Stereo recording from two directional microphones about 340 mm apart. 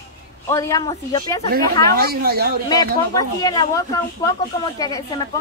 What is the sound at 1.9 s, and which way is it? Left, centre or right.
Speech, right.